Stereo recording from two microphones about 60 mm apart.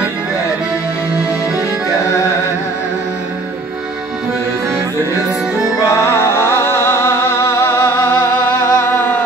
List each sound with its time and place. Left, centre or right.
5.9 s music: left
8.5 s music: left
8.8 s music: left